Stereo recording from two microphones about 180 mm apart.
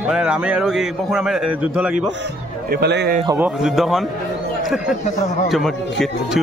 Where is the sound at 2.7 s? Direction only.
65° right (ahead or behind).